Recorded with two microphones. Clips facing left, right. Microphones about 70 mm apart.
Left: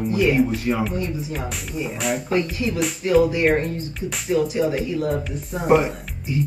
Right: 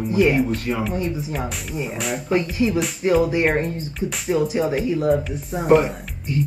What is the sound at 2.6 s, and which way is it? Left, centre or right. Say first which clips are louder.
Speech: right 3 dB; right.